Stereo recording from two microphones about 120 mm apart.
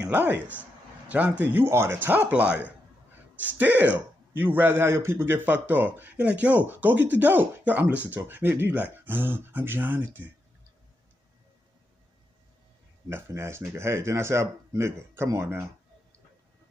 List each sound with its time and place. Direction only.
0.0 s a man's voice: 15° right (ahead or behind)
13.1 s speech: 20° right (ahead or behind)